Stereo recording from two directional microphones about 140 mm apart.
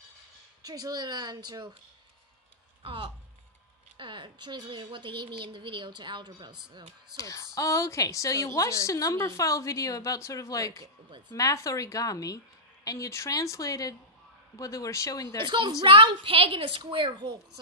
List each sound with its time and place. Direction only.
0.6 s a woman's voice: 25° right (ahead or behind)
2.8 s speech: 40° right (ahead or behind)
7.2 s a woman's voice: 25° left (ahead or behind)
15.4 s speech: 35° right (ahead or behind)